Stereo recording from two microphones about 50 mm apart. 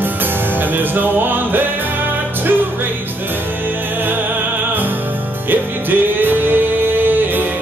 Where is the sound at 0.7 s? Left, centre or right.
Right.